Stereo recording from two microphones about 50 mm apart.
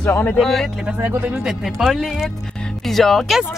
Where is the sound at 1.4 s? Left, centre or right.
Centre.